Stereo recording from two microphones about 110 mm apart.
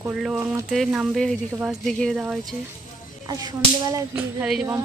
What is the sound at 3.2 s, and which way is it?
Whip, 35° right (ahead or behind).